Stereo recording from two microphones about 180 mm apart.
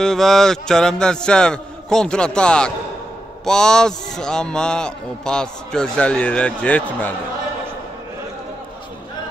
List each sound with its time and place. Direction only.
0.0 s a man's voice: centre (ahead or behind)